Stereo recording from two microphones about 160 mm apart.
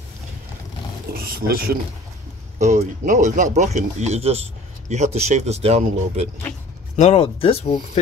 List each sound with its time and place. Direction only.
1.1 s speech: 75° right (ahead or behind)
2.6 s speech: 50° right (ahead or behind)
7.0 s speech: 40° left (ahead or behind)